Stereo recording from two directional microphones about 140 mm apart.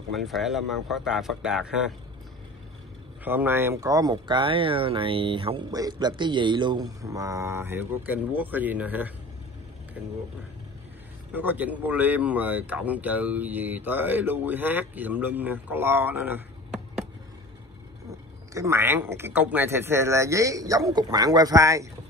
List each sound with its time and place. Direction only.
0.1 s speech: centre (ahead or behind)
3.3 s speech: 15° right (ahead or behind)
11.3 s speech: 10° right (ahead or behind)
18.5 s speech: 20° right (ahead or behind)